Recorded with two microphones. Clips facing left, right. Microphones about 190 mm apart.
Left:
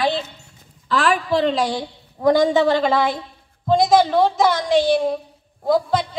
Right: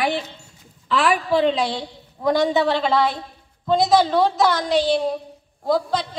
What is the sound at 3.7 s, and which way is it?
Speech, 15° left (ahead or behind).